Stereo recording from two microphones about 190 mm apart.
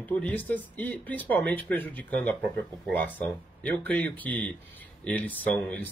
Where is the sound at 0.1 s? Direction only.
10° left (ahead or behind).